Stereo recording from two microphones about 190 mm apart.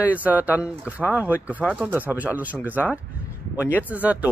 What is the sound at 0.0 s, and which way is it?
Speech, 10° right (ahead or behind).